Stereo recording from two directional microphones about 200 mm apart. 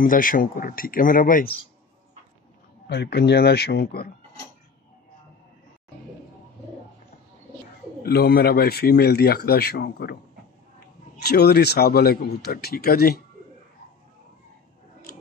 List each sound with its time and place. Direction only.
0.0 s speech: 45° left (ahead or behind)
2.9 s speech: 55° left (ahead or behind)
8.0 s speech: 50° left (ahead or behind)
11.1 s speech: 55° left (ahead or behind)